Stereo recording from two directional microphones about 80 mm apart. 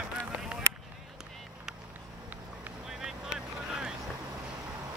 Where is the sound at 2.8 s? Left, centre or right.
Centre.